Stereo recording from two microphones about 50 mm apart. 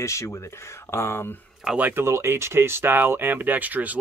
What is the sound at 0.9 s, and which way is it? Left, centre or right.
Speech, left.